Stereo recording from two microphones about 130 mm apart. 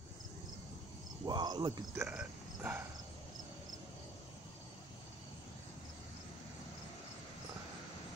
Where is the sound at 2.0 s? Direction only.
10° right (ahead or behind).